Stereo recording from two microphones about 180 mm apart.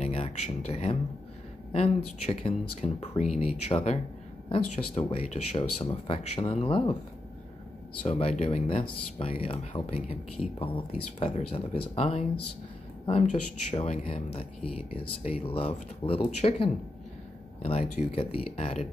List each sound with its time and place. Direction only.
0.0 s speech: 35° left (ahead or behind)
8.0 s speech: 35° left (ahead or behind)